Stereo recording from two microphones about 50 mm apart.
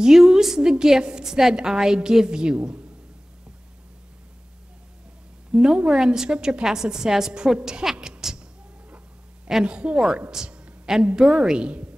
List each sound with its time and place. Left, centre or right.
0.0 s a woman's voice: centre
5.5 s a woman's voice: centre
9.5 s a woman's voice: centre
10.3 s a sound: centre
11.0 s a woman's voice: centre